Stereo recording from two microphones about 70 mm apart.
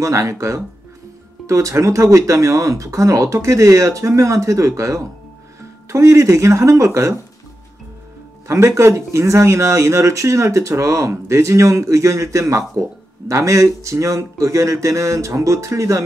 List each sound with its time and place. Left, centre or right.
0.0 s speech: right
8.5 s speech: right